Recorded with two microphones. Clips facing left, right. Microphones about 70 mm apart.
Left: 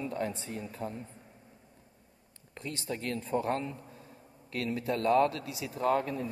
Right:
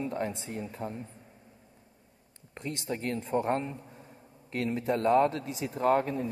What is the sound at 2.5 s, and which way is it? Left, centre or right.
Speech, right.